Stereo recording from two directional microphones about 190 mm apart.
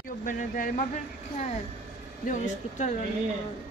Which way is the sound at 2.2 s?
40° left (ahead or behind).